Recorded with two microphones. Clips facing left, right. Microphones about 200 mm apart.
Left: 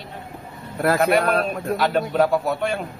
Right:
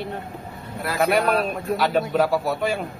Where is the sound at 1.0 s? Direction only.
Centre (ahead or behind).